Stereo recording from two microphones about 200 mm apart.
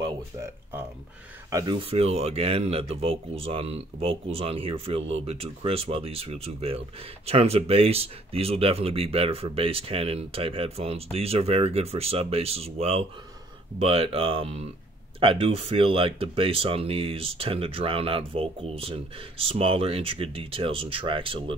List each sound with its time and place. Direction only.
1.5 s speech: 20° right (ahead or behind)